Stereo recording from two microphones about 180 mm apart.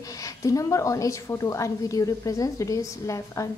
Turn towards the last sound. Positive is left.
turn(degrees=15)  # may be behind; listen again after turning